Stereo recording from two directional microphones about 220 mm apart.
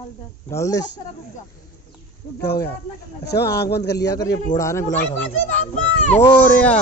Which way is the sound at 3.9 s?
15° left (ahead or behind).